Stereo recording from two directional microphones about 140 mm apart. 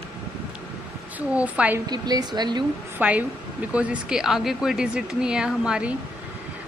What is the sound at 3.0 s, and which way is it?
Speech, 10° right (ahead or behind).